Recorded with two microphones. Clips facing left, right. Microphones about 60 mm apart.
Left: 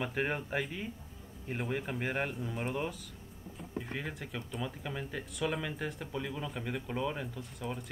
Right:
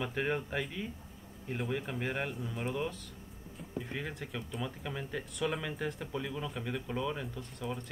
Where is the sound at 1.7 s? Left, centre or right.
Centre.